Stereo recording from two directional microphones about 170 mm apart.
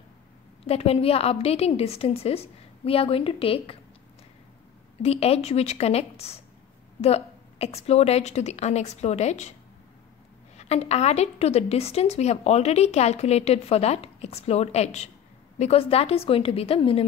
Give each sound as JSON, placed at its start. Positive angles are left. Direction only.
{"t": 0.7, "sound": "a woman's voice", "side_deg": 35}
{"t": 5.0, "sound": "a woman's voice", "side_deg": 35}
{"t": 10.6, "sound": "a woman's voice", "side_deg": 40}